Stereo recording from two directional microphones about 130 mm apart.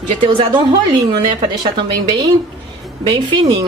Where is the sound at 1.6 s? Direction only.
35° right (ahead or behind).